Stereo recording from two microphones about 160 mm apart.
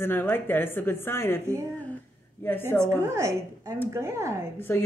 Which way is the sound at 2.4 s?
15° left (ahead or behind).